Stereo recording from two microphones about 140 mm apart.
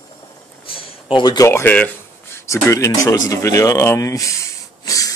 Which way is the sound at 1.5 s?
20° left (ahead or behind).